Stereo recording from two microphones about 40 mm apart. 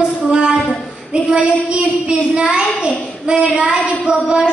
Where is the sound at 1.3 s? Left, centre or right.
Right.